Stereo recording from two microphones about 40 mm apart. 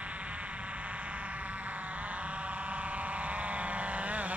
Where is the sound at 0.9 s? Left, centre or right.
Right.